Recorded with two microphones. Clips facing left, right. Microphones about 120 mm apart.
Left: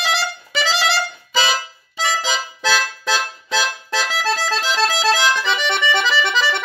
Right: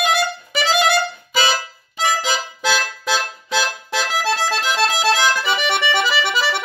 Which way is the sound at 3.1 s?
Centre (ahead or behind).